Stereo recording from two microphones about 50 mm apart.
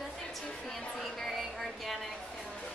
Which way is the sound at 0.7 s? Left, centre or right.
Centre.